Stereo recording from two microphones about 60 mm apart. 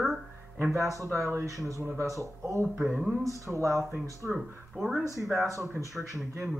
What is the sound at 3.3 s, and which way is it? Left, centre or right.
Speech, right.